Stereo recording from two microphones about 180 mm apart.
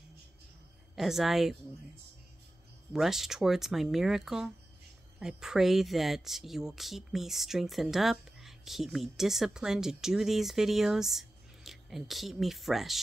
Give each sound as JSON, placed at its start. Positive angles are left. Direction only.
{"t": 0.9, "sound": "speech", "side_deg": 0}
{"t": 2.9, "sound": "speech", "side_deg": 0}